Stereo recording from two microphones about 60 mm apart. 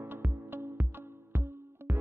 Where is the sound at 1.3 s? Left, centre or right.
Right.